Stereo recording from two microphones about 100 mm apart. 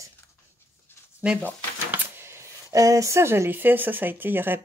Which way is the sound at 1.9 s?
25° right (ahead or behind).